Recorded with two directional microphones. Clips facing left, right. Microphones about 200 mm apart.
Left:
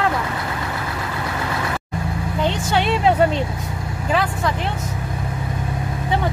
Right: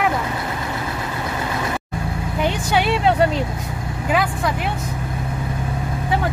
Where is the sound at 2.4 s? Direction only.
10° right (ahead or behind).